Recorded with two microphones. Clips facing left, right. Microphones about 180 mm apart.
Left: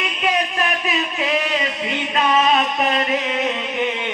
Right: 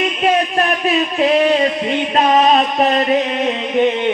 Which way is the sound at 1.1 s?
40° right (ahead or behind).